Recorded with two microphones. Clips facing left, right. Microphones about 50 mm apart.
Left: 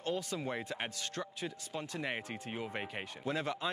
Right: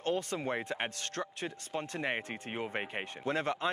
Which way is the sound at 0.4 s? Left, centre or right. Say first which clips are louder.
Right 3 dB; centre.